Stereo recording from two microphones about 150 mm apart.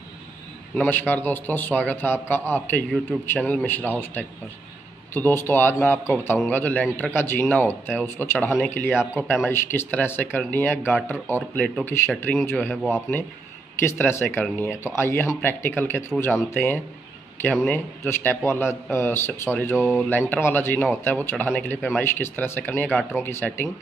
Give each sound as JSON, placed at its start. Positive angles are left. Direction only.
{"t": 0.7, "sound": "a man's voice", "side_deg": 15}
{"t": 13.7, "sound": "a man's voice", "side_deg": 15}
{"t": 19.8, "sound": "speech", "side_deg": -10}
{"t": 20.1, "sound": "a man's voice", "side_deg": 15}